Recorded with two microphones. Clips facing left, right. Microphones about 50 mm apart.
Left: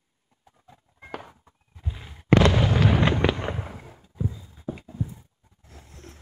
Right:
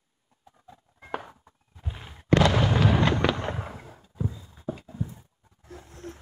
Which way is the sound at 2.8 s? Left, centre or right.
Centre.